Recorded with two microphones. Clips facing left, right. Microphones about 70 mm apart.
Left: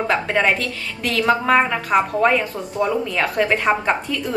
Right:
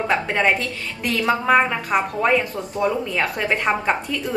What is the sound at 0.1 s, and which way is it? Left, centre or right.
A woman's voice, centre.